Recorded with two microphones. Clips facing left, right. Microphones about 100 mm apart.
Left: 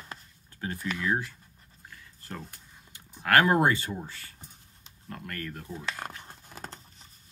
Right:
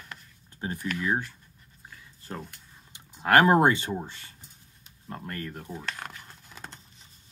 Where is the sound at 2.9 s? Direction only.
20° right (ahead or behind).